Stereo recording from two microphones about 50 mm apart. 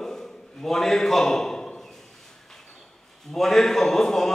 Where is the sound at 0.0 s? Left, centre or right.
Centre.